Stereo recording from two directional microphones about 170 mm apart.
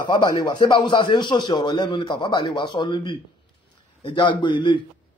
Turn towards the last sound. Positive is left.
turn(degrees=25)  # may be behind; listen again after turning